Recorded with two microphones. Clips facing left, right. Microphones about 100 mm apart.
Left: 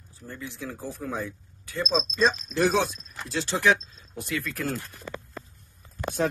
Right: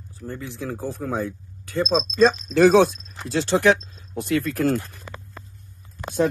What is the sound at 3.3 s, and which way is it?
Speech, 60° right (ahead or behind).